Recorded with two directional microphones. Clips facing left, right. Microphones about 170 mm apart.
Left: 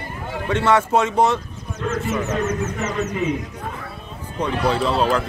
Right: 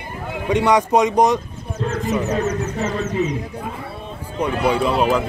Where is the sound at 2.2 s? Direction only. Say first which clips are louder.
Right 2 dB; 35° right (ahead or behind).